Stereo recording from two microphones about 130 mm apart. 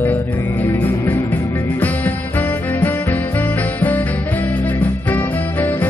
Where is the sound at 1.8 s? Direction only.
15° left (ahead or behind).